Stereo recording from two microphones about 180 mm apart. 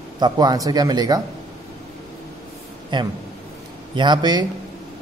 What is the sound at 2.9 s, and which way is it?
A man's voice, 25° right (ahead or behind).